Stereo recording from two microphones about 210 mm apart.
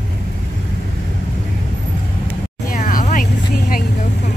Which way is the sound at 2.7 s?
40° left (ahead or behind).